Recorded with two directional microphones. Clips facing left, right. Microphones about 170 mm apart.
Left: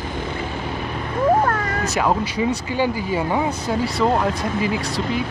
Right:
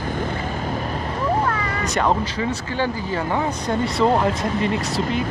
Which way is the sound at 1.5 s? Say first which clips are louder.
Left 2 dB; 50° left (ahead or behind).